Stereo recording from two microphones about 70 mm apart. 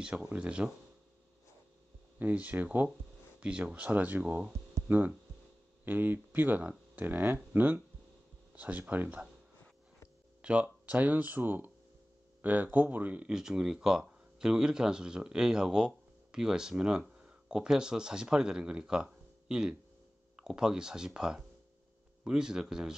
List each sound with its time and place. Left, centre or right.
0.0 s speech: centre
2.1 s speech: right
10.4 s speech: centre
13.4 s speech: centre